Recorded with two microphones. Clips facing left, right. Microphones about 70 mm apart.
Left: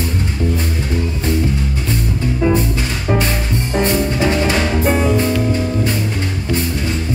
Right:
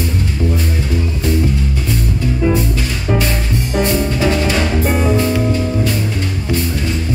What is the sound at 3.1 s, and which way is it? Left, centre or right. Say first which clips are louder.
Music: even; left.